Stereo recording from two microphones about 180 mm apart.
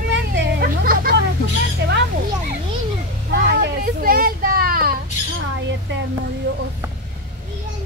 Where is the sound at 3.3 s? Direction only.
70° right (ahead or behind); by 4.9 s 55° right (ahead or behind).